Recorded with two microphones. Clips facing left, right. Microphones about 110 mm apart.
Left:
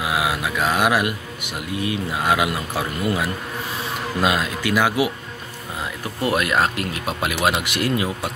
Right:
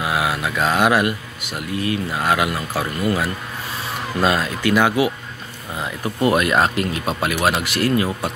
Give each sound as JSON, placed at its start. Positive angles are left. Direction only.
{"t": 0.0, "sound": "a man's voice", "side_deg": 10}
{"t": 6.2, "sound": "speech", "side_deg": 0}
{"t": 7.3, "sound": "a man's voice", "side_deg": 15}